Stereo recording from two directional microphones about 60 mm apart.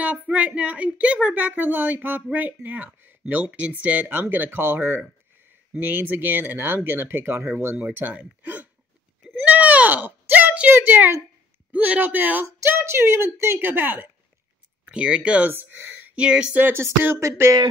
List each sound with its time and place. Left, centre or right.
0.0 s speech: right
5.8 s speech: right
8.1 s speech: right
9.3 s a sound: right
11.7 s speech: right
12.6 s speech: right
14.9 s speech: centre
15.5 s speech: right
16.2 s speech: centre
16.5 s speech: right
17.2 s a sound: right